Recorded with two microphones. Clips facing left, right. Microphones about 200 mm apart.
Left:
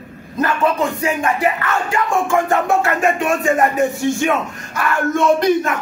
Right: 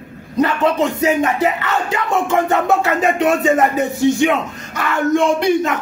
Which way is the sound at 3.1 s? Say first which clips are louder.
Right 2 dB; 20° right (ahead or behind).